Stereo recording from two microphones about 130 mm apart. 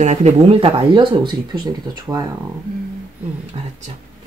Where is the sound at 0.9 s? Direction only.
35° right (ahead or behind).